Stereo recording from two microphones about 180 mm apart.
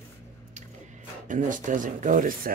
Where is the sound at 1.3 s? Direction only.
45° right (ahead or behind).